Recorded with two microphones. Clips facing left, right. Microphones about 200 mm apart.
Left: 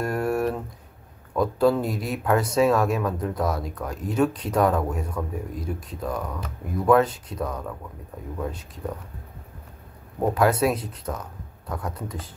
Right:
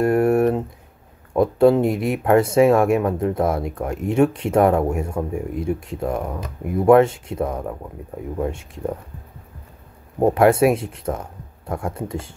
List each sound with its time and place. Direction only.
0.0 s a sound: 25° right (ahead or behind)
1.3 s speech: 25° right (ahead or behind)
10.1 s speech: 30° right (ahead or behind)